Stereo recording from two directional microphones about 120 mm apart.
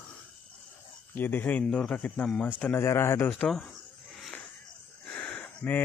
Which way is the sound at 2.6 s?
20° left (ahead or behind).